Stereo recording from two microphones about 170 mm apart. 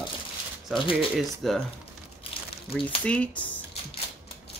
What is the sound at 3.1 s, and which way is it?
Speech, 10° left (ahead or behind).